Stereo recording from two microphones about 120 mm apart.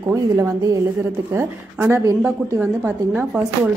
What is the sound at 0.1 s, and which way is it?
Speech, 25° right (ahead or behind).